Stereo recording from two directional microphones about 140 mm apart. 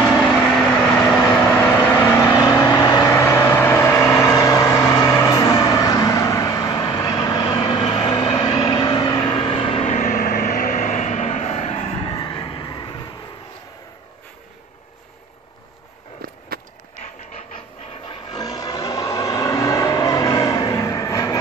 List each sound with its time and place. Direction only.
0.0 s vehicle: 10° right (ahead or behind); by 9.9 s 40° left (ahead or behind)
9.9 s vehicle: 65° left (ahead or behind); by 11.9 s 50° left (ahead or behind)
12.0 s vehicle: 35° left (ahead or behind)
16.2 s a sound: 85° right
18.0 s vehicle: 30° left (ahead or behind)